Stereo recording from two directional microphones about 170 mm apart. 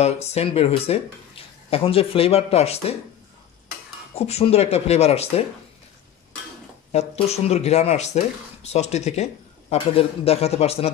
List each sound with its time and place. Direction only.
0.0 s speech: 40° left (ahead or behind)
4.1 s speech: 40° left (ahead or behind)
6.9 s speech: 40° left (ahead or behind)